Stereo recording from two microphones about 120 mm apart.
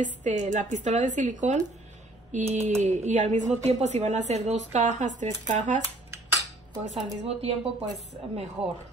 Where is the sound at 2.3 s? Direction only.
85° right.